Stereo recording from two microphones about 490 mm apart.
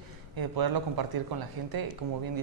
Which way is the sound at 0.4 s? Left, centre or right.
Right.